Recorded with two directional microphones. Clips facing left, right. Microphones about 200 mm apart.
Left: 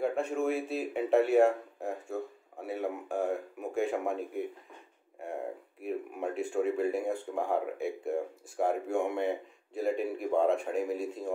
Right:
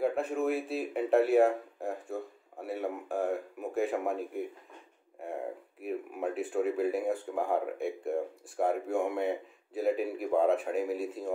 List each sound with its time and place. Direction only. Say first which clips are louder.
0.0 s speech: even; centre (ahead or behind)